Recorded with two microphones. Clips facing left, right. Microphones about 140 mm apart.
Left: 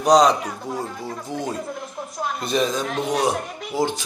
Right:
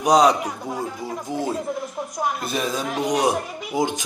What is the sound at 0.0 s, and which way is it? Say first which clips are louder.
Speech: left 1 dB; 10° right (ahead or behind).